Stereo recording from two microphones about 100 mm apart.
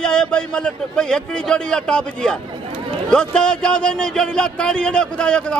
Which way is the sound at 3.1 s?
10° left (ahead or behind).